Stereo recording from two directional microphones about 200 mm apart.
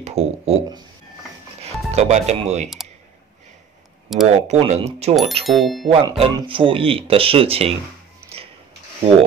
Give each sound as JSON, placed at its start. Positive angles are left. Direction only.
{"t": 0.0, "sound": "speech", "side_deg": -30}
{"t": 1.9, "sound": "speech", "side_deg": -35}
{"t": 4.1, "sound": "speech", "side_deg": 0}
{"t": 4.5, "sound": "speech", "side_deg": -35}
{"t": 5.5, "sound": "speech", "side_deg": 0}
{"t": 5.9, "sound": "speech", "side_deg": -25}